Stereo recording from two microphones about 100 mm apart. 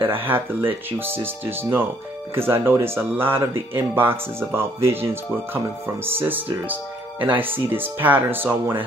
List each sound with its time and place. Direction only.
0.0 s speech: 20° right (ahead or behind)